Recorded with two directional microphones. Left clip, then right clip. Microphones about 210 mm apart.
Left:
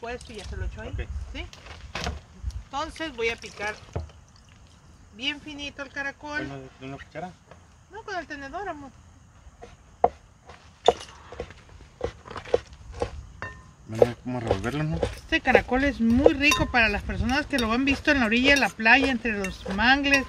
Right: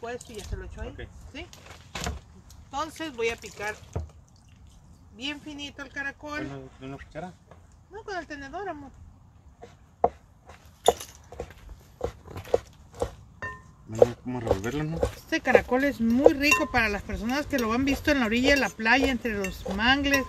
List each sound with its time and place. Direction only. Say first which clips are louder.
0.0 s speech: left 1 dB; 10° right (ahead or behind)
1.5 s speech: left 3 dB; 10° left (ahead or behind)
2.0 s speech: left 2 dB; 10° right (ahead or behind)
3.9 s drip: left 2 dB; 5° left (ahead or behind)
5.1 s speech: left 4 dB; 10° right (ahead or behind)
6.5 s speech: left 1 dB; 10° left (ahead or behind)
7.9 s speech: left 2 dB; 10° right (ahead or behind)
9.6 s chopping: left 2 dB; 5° right (ahead or behind)
12.0 s a sound: left 2 dB; 5° left (ahead or behind)
14.2 s speech: even; 45° left (ahead or behind)
15.0 s speech: left 3 dB; 10° left (ahead or behind)